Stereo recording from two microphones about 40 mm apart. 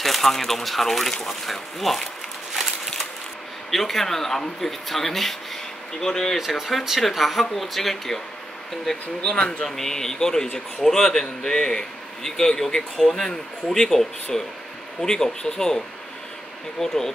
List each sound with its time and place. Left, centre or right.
0.0 s speech: centre
2.5 s a sound: centre
3.7 s a man's voice: centre
6.3 s speech: centre
9.3 s speech: left
9.7 s a man's voice: centre
16.8 s a man's voice: centre